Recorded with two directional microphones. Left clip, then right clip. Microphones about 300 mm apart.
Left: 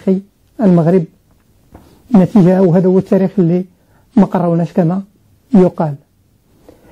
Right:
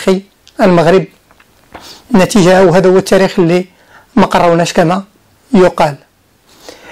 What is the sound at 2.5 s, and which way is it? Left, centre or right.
Speech, centre.